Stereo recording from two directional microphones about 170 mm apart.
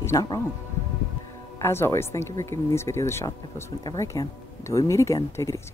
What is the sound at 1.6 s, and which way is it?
Speech, 15° left (ahead or behind).